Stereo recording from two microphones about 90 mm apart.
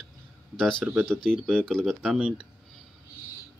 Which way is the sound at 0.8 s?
20° right (ahead or behind).